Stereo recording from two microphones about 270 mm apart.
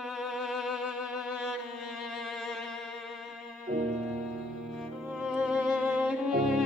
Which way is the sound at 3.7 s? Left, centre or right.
Right.